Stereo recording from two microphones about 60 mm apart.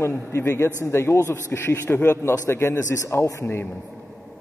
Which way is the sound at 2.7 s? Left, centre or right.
Left.